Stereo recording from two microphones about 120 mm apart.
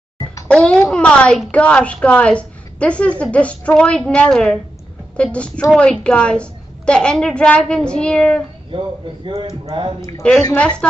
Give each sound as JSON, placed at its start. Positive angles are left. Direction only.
{"t": 0.5, "sound": "a woman's voice", "side_deg": 10}
{"t": 9.7, "sound": "speech", "side_deg": -40}
{"t": 10.5, "sound": "a woman's voice", "side_deg": 10}